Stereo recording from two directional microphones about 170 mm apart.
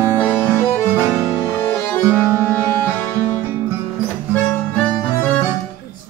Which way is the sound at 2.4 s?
10° left (ahead or behind).